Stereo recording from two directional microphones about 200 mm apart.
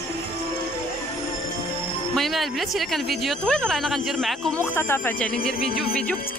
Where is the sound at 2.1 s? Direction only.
Centre (ahead or behind).